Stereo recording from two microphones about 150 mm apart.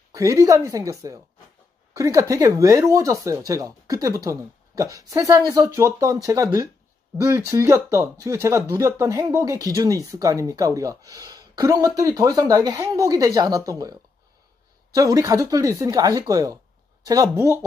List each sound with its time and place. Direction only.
0.1 s speech: 20° right (ahead or behind)
15.0 s speech: 20° right (ahead or behind)